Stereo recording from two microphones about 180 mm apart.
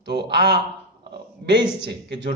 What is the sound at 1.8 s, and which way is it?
Speech, 70° right (ahead or behind).